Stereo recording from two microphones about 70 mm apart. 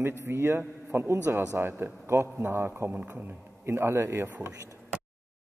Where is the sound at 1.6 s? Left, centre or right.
Right.